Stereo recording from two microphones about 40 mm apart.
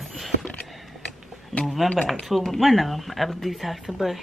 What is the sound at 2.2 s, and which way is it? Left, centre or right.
Speech, centre.